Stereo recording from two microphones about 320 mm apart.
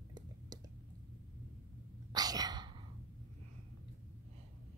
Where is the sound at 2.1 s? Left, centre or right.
Centre.